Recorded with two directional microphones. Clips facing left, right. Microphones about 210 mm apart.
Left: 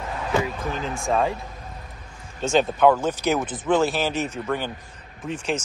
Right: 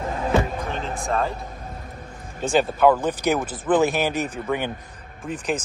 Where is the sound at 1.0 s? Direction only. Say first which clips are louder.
Left 3 dB; centre (ahead or behind).